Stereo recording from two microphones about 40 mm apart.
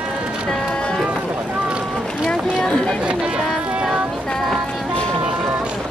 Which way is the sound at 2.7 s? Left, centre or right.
Left.